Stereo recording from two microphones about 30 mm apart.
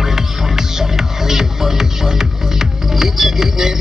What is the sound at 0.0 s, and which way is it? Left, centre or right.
Music, centre.